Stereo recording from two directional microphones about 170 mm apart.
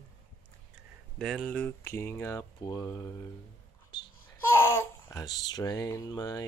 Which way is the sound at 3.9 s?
30° left (ahead or behind).